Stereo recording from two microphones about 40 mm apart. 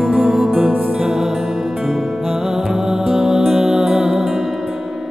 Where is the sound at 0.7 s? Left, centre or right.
Right.